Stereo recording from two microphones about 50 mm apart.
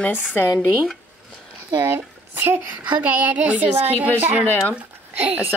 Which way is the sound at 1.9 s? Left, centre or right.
Right.